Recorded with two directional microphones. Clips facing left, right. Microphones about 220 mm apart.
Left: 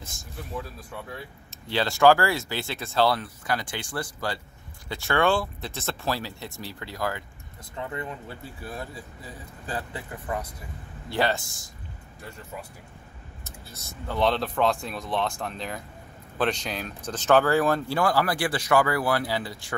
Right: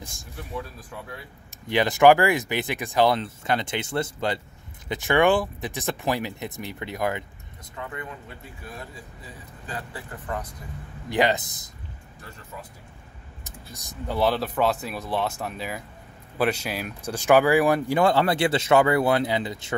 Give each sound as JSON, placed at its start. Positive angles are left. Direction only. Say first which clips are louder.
{"t": 1.7, "sound": "speech", "louder": "right 3 dB", "side_deg": -15}
{"t": 7.7, "sound": "speech", "louder": "left 2 dB", "side_deg": 30}
{"t": 10.1, "sound": "speech", "louder": "left 1 dB", "side_deg": 10}
{"t": 11.1, "sound": "speech", "louder": "right 3 dB", "side_deg": -15}
{"t": 13.4, "sound": "speech", "louder": "right 2 dB", "side_deg": -15}